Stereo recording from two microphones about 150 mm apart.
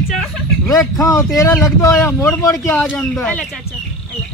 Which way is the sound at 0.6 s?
20° left (ahead or behind).